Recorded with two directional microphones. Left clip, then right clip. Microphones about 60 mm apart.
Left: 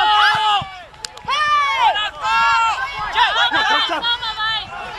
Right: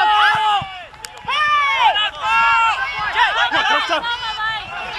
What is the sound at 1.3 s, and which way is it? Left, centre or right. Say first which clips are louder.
Run: even; centre.